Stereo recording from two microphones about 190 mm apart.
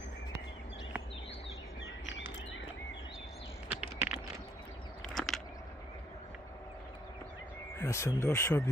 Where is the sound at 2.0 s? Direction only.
75° left (ahead or behind).